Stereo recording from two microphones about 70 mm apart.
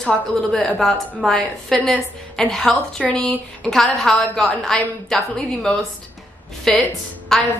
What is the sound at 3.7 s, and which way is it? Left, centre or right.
Speech, centre.